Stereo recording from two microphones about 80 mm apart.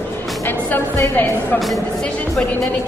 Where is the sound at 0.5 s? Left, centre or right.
Left.